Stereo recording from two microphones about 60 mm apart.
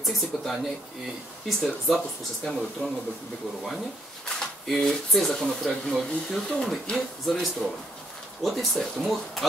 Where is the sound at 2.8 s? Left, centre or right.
Centre.